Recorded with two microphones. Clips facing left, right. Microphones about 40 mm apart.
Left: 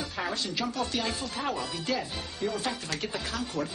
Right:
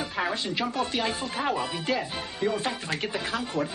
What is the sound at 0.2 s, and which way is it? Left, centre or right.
Speech, right.